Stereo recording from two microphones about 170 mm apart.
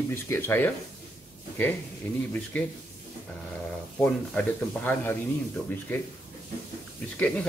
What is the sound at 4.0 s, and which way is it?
Speech, 10° left (ahead or behind).